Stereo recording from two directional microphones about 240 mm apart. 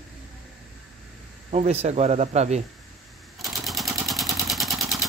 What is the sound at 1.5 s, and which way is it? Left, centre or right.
Speech, right.